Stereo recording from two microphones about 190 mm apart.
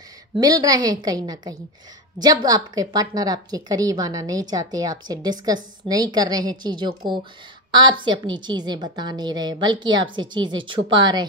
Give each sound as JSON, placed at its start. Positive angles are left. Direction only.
{"t": 0.4, "sound": "a woman's voice", "side_deg": -20}